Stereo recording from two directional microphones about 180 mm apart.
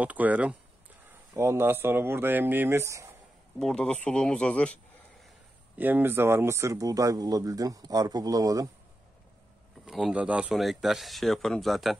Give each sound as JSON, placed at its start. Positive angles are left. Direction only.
{"t": 0.0, "sound": "speech", "side_deg": -10}
{"t": 3.5, "sound": "speech", "side_deg": 5}
{"t": 5.8, "sound": "speech", "side_deg": -10}
{"t": 9.8, "sound": "speech", "side_deg": -5}